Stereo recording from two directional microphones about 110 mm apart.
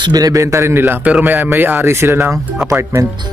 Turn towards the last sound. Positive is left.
turn(degrees=-25)  # may be behind; listen again after turning